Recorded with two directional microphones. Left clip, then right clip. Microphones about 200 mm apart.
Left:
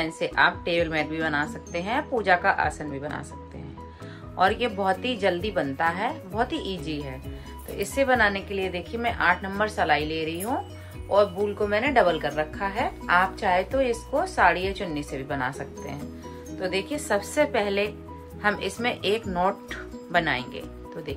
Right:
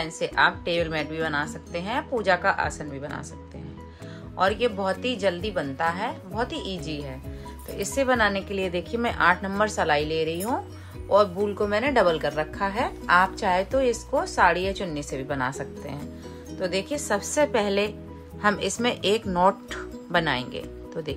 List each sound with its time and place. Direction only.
0.0 s speech: 10° right (ahead or behind)
4.4 s a woman's voice: 10° right (ahead or behind)